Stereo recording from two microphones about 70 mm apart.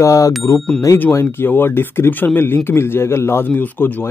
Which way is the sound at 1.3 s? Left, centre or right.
Left.